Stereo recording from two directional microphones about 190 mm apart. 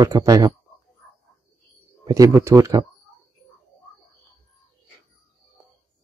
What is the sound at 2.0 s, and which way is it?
Speech, 15° right (ahead or behind).